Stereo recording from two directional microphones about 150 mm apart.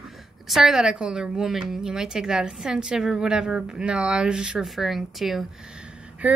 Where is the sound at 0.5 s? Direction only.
Centre (ahead or behind).